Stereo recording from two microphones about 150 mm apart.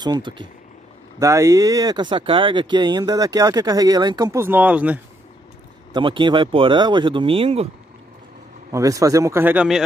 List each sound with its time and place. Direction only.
0.0 s speech: 30° right (ahead or behind)
1.2 s speech: 20° right (ahead or behind)
5.9 s speech: 30° right (ahead or behind)
8.7 s speech: 20° right (ahead or behind)